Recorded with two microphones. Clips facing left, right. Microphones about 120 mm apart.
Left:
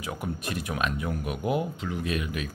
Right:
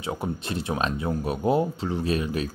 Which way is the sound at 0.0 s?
25° right (ahead or behind).